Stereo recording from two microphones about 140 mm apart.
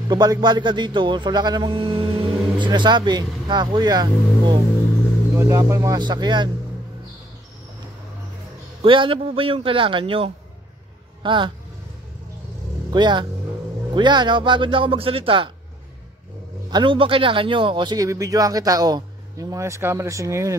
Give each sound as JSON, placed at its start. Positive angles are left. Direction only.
{"t": 0.1, "sound": "speech", "side_deg": -30}
{"t": 5.3, "sound": "a man's voice", "side_deg": -20}
{"t": 8.8, "sound": "speech", "side_deg": -40}
{"t": 12.9, "sound": "speech", "side_deg": -30}
{"t": 16.7, "sound": "a man's voice", "side_deg": -35}